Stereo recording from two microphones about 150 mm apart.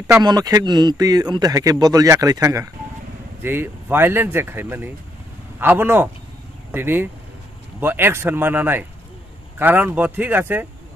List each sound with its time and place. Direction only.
0.0 s a man's voice: 25° right (ahead or behind)